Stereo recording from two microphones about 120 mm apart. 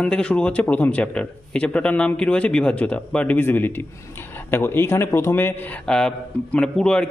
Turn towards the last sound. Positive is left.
turn(degrees=5)  # may be behind; listen again after turning